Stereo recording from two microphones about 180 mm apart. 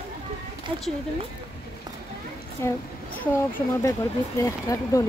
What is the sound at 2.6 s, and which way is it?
Speech, 15° left (ahead or behind).